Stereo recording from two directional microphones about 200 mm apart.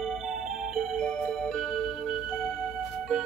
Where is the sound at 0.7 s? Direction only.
5° left (ahead or behind).